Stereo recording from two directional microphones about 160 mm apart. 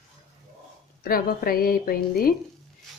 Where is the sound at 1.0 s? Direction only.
65° left (ahead or behind).